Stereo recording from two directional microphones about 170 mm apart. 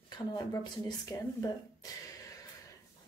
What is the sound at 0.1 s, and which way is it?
Speech, 25° left (ahead or behind).